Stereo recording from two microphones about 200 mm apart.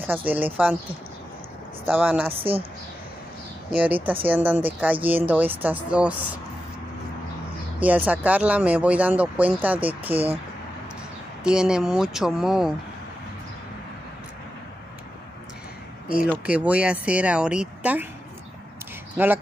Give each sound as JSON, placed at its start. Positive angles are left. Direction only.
{"t": 0.0, "sound": "speech", "side_deg": -10}
{"t": 1.9, "sound": "speech", "side_deg": -5}
{"t": 2.3, "sound": "a woman's voice", "side_deg": -30}
{"t": 3.7, "sound": "speech", "side_deg": -10}
{"t": 7.8, "sound": "speech", "side_deg": -10}
{"t": 11.4, "sound": "speech", "side_deg": -5}
{"t": 16.3, "sound": "speech", "side_deg": -5}
{"t": 19.1, "sound": "speech", "side_deg": -10}